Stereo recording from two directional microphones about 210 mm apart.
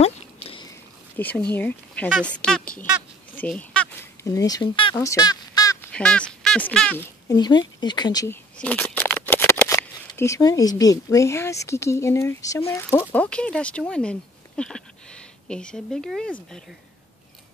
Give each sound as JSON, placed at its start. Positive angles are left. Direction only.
{"t": 0.0, "sound": "a sound", "side_deg": 25}
{"t": 0.7, "sound": "a sound", "side_deg": 10}
{"t": 1.5, "sound": "speech", "side_deg": 5}
{"t": 3.3, "sound": "honk", "side_deg": 5}
{"t": 4.9, "sound": "fowl", "side_deg": 15}
{"t": 5.9, "sound": "speech", "side_deg": 5}
{"t": 7.2, "sound": "speech", "side_deg": 20}